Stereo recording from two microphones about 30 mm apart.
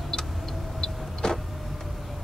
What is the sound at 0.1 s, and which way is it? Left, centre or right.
Vehicle, centre.